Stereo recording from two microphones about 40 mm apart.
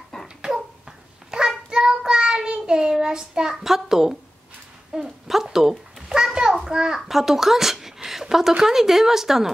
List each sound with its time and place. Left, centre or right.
0.1 s a sound: centre
1.3 s child singing: centre
3.5 s a child's voice: centre
4.9 s a sound: centre
6.7 s a child's voice: centre
7.1 s speech: centre